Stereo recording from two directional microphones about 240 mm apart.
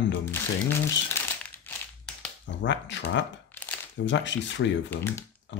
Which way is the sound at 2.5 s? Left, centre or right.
Left.